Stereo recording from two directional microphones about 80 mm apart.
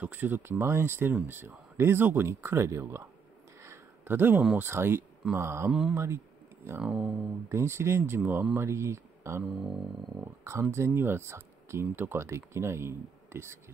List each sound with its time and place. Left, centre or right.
0.0 s speech: right
3.6 s a sound: right
4.6 s speech: right
5.7 s speech: centre
5.9 s a sound: right
6.8 s speech: centre
7.4 s speech: right
8.5 s speech: right
9.5 s a sound: centre
10.4 s speech: right